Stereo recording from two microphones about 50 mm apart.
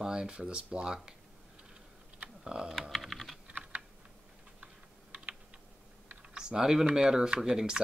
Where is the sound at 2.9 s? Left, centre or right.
Centre.